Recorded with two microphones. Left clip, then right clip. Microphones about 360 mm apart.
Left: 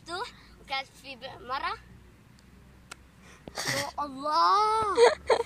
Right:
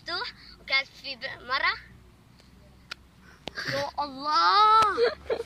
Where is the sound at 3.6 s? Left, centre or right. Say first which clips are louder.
Right 2 dB; centre.